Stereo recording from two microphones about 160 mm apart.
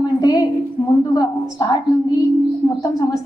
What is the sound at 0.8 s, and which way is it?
Speech, 35° left (ahead or behind).